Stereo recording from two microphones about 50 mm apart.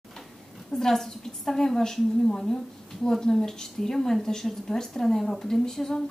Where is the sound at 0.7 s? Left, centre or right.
Centre.